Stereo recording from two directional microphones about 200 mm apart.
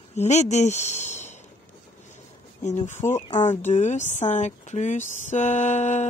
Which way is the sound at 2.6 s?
35° left (ahead or behind).